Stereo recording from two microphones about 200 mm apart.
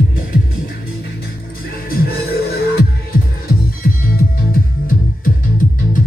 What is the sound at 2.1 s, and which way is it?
Music, 50° left (ahead or behind).